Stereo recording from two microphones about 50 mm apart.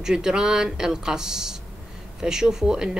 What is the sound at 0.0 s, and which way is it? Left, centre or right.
Speech, centre.